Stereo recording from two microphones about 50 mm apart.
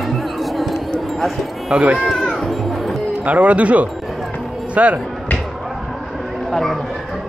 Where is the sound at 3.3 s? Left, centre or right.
Right.